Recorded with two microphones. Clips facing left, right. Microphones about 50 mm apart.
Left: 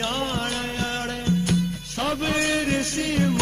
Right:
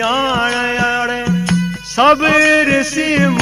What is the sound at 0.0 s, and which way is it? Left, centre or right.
Music, right.